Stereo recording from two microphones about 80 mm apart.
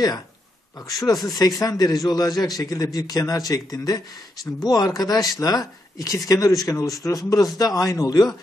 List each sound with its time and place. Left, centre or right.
0.8 s a man's voice: left